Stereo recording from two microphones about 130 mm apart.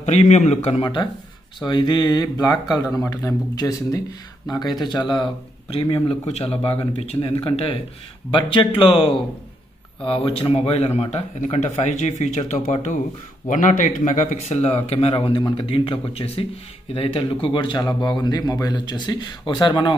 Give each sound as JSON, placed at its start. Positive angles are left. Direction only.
{"t": 0.0, "sound": "speech", "side_deg": 60}
{"t": 1.6, "sound": "speech", "side_deg": 40}
{"t": 2.5, "sound": "speech", "side_deg": 25}
{"t": 13.5, "sound": "speech", "side_deg": 85}